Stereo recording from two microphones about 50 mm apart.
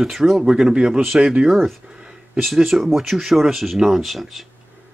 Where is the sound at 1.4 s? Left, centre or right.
Centre.